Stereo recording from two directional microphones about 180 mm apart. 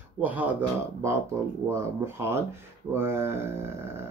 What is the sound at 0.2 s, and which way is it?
Speech, 10° right (ahead or behind).